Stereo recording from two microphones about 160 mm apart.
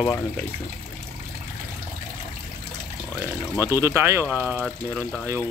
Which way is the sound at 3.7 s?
15° right (ahead or behind).